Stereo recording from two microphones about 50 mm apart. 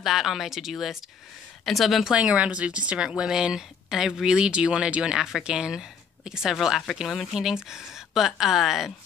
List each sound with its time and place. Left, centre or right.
0.0 s speech: centre
2.1 s a woman's voice: right; by 7.2 s centre
7.2 s speech: centre